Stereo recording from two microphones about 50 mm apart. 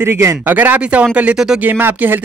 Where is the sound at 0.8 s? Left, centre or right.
Right.